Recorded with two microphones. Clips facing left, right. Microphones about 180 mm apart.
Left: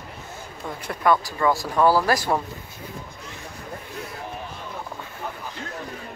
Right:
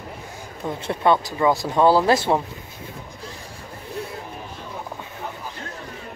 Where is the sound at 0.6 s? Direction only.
25° right (ahead or behind).